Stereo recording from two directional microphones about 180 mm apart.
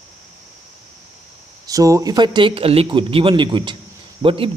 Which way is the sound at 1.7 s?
20° right (ahead or behind).